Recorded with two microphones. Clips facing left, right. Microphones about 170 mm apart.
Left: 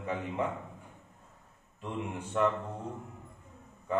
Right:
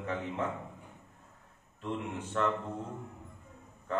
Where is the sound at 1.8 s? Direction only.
15° left (ahead or behind).